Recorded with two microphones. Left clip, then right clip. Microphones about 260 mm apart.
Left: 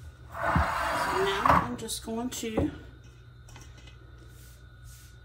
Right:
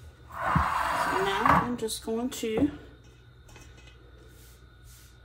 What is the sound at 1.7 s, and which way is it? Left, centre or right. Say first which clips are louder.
Speech: right 4 dB; right.